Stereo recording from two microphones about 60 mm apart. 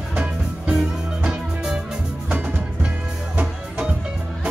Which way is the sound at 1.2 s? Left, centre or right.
Centre.